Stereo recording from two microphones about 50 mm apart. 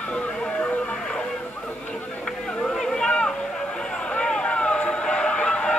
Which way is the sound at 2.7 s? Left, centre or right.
Centre.